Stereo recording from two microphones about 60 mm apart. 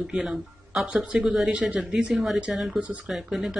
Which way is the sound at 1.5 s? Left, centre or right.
Right.